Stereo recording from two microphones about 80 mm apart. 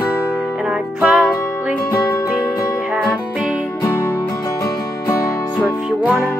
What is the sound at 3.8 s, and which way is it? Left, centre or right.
Music, left.